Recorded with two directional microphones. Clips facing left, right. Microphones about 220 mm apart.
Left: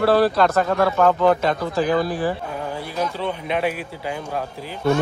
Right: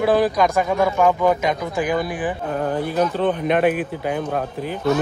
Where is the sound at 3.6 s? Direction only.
55° right (ahead or behind).